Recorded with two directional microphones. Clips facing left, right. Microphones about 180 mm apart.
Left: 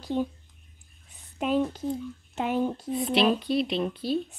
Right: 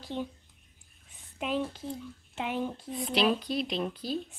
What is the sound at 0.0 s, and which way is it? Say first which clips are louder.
Speech: left 7 dB; 45° left (ahead or behind).